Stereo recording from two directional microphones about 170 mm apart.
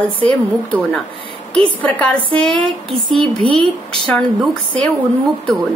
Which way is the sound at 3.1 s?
30° right (ahead or behind).